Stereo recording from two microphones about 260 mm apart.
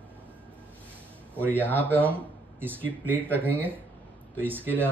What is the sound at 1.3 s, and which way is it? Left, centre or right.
Speech, centre.